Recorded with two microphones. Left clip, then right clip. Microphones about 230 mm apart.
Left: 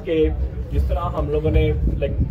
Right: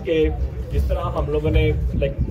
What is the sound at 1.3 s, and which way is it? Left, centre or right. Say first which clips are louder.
Speech: even; right.